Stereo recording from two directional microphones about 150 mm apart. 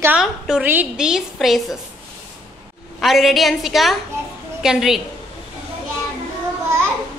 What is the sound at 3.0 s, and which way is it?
A woman's voice, centre (ahead or behind).